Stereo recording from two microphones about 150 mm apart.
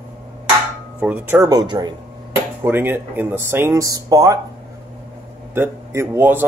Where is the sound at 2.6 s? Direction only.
15° right (ahead or behind).